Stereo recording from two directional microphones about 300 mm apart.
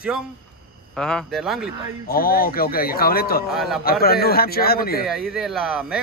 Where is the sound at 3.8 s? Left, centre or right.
Left.